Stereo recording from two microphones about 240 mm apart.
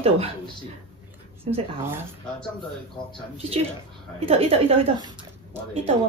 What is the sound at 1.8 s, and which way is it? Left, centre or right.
Speech, centre.